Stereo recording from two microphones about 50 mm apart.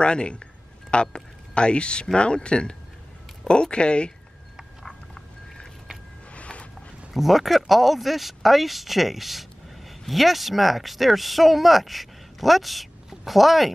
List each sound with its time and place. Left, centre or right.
0.0 s speech: centre
6.3 s a sound: left
7.2 s speech: centre